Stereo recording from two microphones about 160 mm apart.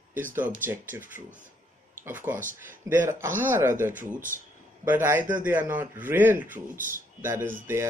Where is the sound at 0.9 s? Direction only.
15° right (ahead or behind).